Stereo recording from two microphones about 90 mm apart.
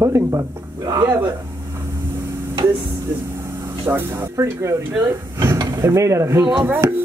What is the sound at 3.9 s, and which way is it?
Speech, 30° right (ahead or behind).